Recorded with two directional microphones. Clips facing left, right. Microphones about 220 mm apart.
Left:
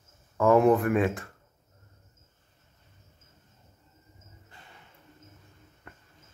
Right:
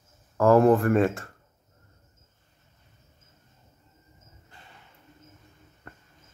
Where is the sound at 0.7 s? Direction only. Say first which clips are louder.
Right 3 dB; 50° right (ahead or behind).